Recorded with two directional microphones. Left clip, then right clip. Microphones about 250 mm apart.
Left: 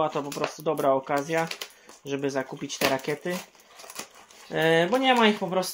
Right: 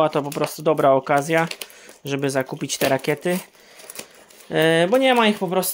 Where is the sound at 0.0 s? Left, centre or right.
Right.